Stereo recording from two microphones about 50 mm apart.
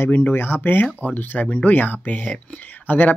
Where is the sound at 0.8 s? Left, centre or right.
Left.